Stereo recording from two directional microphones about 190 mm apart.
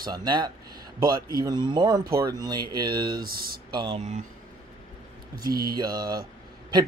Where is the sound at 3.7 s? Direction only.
25° right (ahead or behind).